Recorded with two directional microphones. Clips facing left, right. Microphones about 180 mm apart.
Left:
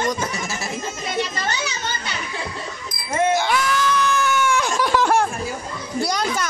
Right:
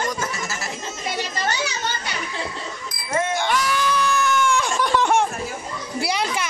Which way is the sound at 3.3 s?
5° left (ahead or behind).